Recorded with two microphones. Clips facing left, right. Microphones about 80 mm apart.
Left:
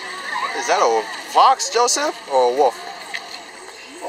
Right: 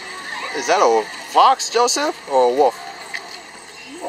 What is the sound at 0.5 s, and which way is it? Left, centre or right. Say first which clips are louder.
Speech: right 2 dB; centre.